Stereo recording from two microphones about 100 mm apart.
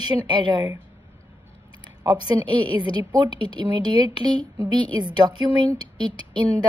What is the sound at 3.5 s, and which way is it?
A woman's voice, 50° right (ahead or behind).